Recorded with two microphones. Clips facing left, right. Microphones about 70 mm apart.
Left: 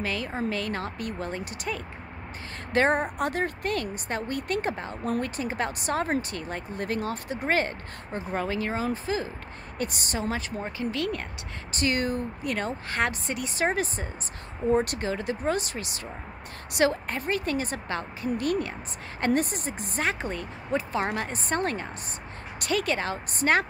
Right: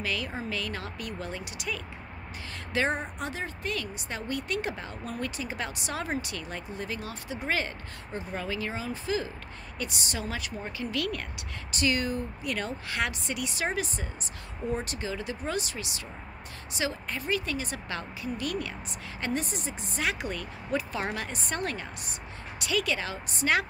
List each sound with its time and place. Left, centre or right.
0.0 s a woman's voice: left
11.7 s a woman's voice: left